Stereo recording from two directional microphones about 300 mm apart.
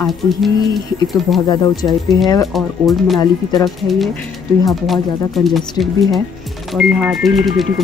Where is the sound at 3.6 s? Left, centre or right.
Centre.